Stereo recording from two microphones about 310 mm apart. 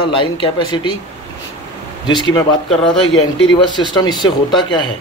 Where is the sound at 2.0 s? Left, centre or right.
Centre.